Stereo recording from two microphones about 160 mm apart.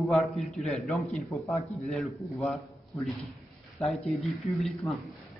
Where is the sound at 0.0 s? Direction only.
Centre (ahead or behind).